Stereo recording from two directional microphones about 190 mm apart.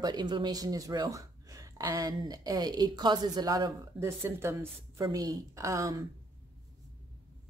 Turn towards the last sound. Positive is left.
turn(degrees=-15)  # may be behind; listen again after turning